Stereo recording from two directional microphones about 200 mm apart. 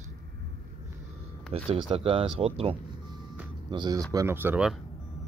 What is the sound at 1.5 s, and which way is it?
Speech, 30° right (ahead or behind).